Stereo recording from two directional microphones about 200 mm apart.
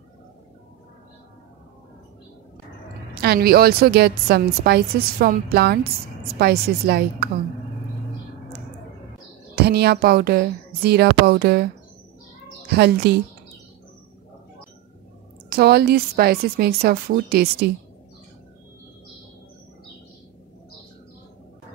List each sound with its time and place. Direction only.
3.2 s a woman's voice: 50° right (ahead or behind)
9.6 s a woman's voice: 55° right (ahead or behind)
12.6 s a woman's voice: 55° right (ahead or behind)
15.5 s a woman's voice: 50° right (ahead or behind)